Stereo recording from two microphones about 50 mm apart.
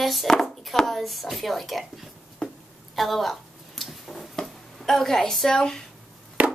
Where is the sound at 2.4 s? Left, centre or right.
Centre.